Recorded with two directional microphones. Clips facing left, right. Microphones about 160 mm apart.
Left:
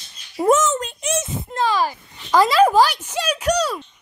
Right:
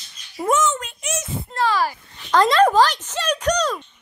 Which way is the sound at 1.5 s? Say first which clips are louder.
Even; 20° left (ahead or behind).